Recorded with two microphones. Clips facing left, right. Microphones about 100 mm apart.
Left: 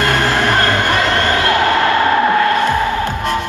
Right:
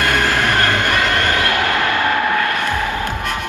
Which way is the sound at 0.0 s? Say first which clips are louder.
Left 2 dB; 25° left (ahead or behind).